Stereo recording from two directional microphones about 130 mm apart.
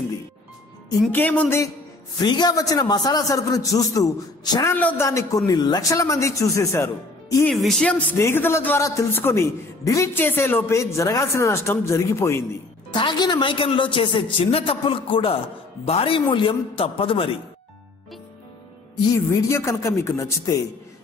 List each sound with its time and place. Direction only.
1.1 s speech: 10° left (ahead or behind)
2.2 s a man's voice: 30° left (ahead or behind)
4.7 s a man's voice: 15° left (ahead or behind)
7.4 s speech: 5° left (ahead or behind)
8.2 s a man's voice: 20° left (ahead or behind)
12.9 s a woman's voice: 35° left (ahead or behind)
19.1 s a man's voice: 20° left (ahead or behind)